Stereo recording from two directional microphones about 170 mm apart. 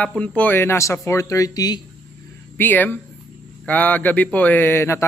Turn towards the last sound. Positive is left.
turn(degrees=15)  # may be behind; listen again after turning